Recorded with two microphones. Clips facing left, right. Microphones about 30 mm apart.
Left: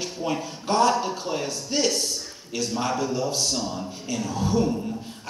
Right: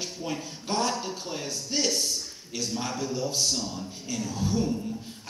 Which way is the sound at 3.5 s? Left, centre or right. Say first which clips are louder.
Left 4 dB; centre.